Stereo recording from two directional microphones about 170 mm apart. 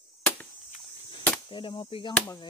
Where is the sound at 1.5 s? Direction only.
30° left (ahead or behind).